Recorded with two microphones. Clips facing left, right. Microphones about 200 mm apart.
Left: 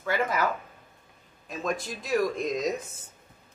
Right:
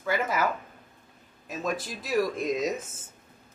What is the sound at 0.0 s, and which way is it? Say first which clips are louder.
Speech: even; 5° right (ahead or behind).